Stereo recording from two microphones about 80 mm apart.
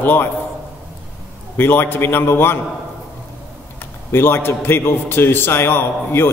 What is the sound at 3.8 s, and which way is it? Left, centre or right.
A man's voice, left.